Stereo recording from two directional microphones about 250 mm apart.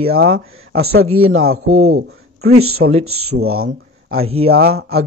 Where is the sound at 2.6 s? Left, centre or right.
Right.